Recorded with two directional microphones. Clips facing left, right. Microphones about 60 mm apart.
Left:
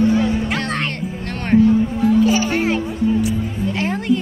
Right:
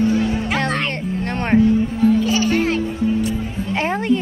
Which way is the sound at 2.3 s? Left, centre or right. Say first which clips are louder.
Even; centre.